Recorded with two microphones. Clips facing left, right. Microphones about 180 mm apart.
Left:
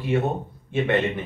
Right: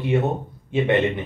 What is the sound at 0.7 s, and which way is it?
Speech, 15° right (ahead or behind).